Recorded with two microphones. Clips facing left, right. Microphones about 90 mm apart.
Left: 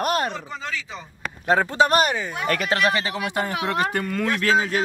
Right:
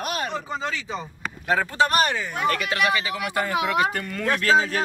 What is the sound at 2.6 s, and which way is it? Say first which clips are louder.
Speech: left 2 dB; 35° left (ahead or behind).